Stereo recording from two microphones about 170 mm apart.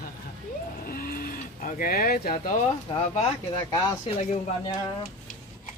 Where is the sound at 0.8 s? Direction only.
60° left (ahead or behind).